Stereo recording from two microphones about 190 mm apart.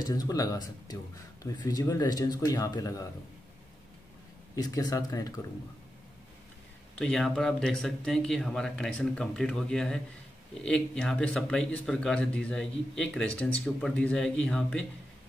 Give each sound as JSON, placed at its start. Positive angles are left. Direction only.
{"t": 0.0, "sound": "a man's voice", "side_deg": 20}
{"t": 4.6, "sound": "a man's voice", "side_deg": 20}
{"t": 7.0, "sound": "a man's voice", "side_deg": 5}